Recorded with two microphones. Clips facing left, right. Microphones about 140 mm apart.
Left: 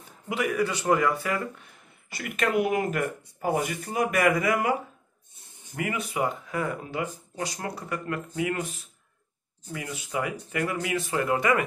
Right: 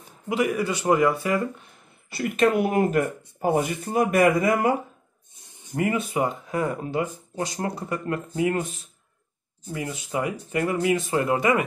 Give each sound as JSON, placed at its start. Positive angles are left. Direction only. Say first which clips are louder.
{"t": 0.3, "sound": "speech", "louder": "right 3 dB", "side_deg": -20}
{"t": 5.8, "sound": "speech", "louder": "right 5 dB", "side_deg": -35}
{"t": 9.7, "sound": "speech", "louder": "right 4 dB", "side_deg": -30}